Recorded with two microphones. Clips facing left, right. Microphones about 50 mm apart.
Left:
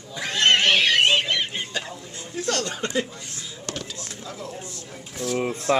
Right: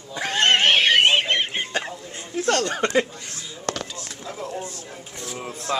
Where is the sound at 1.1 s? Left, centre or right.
Right.